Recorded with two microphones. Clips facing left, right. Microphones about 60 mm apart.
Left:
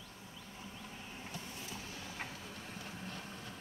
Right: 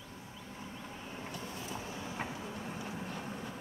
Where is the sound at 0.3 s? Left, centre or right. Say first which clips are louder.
Right 4 dB; centre.